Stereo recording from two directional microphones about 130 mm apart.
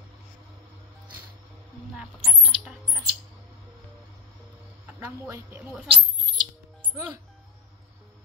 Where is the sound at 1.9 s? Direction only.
5° right (ahead or behind).